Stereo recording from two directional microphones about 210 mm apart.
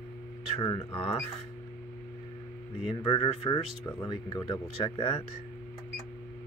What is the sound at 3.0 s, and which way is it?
Speech, 25° left (ahead or behind).